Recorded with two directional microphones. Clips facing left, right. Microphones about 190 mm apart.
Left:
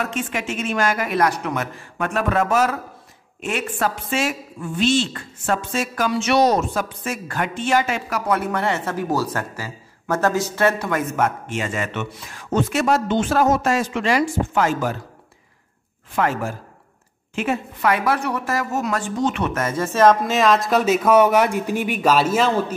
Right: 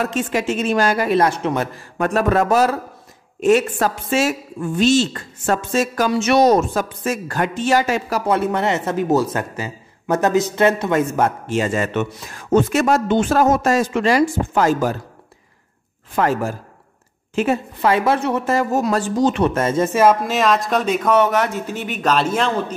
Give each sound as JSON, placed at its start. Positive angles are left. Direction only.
{"t": 0.0, "sound": "a man's voice", "side_deg": -35}
{"t": 8.3, "sound": "a man's voice", "side_deg": -25}
{"t": 16.2, "sound": "a man's voice", "side_deg": -40}
{"t": 19.9, "sound": "speech", "side_deg": -10}